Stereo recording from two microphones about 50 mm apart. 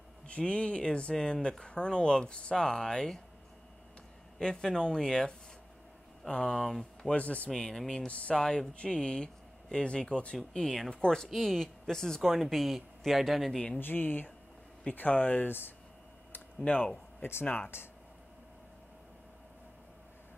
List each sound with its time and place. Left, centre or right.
0.3 s speech: left
4.4 s speech: centre
7.5 s speech: centre
8.1 s speech: left
11.2 s speech: centre
13.7 s speech: left
16.6 s speech: left
17.2 s speech: left